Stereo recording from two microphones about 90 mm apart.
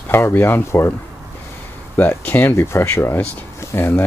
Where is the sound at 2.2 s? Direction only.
20° left (ahead or behind).